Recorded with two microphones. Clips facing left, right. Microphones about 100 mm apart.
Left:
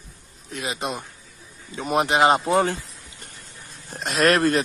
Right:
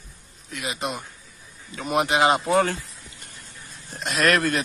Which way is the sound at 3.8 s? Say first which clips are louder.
Left 2 dB; 40° left (ahead or behind).